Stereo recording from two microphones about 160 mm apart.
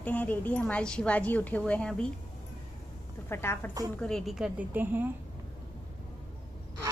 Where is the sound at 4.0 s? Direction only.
5° left (ahead or behind).